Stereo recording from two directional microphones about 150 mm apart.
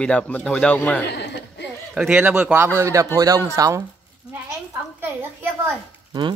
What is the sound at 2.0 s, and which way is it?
Speech, 10° right (ahead or behind).